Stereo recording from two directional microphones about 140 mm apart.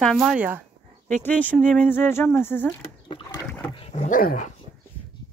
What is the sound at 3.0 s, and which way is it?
Rowboat, 40° left (ahead or behind).